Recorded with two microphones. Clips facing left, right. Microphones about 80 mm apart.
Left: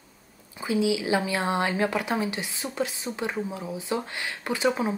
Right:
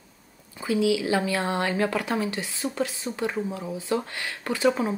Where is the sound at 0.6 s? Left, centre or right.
Left.